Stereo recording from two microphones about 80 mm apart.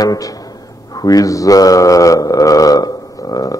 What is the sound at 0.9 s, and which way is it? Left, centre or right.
Mantra, left.